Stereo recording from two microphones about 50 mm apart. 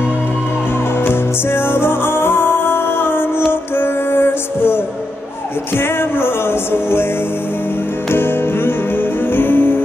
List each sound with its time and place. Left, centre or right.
1.0 s music: left
8.1 s music: left